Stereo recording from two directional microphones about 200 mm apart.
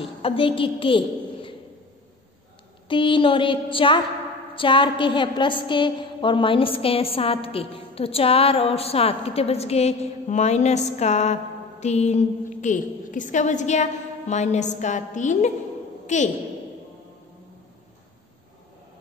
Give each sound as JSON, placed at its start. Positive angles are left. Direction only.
{"t": 0.0, "sound": "a woman's voice", "side_deg": 30}
{"t": 2.9, "sound": "a woman's voice", "side_deg": 25}